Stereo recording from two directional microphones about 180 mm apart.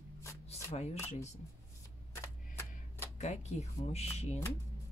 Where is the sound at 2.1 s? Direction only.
15° left (ahead or behind).